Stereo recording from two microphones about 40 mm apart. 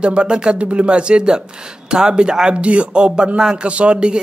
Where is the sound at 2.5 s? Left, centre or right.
Right.